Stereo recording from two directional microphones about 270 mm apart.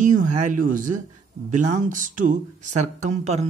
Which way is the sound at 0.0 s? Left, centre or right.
Right.